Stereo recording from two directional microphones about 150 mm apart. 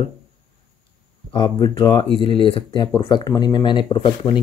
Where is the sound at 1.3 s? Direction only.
35° left (ahead or behind).